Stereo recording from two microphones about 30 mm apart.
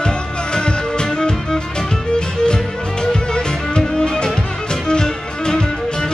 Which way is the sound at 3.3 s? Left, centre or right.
Left.